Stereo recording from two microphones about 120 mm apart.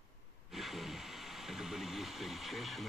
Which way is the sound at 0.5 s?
Centre (ahead or behind).